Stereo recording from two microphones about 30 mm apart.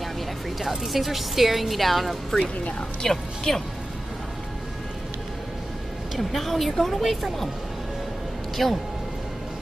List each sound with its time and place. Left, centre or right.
0.6 s a woman's voice: centre
3.0 s speech: centre
6.1 s a woman's voice: centre
8.6 s a woman's voice: centre